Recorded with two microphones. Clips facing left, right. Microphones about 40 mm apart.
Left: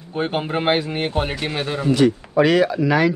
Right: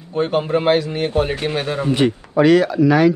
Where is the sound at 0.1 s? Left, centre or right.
Centre.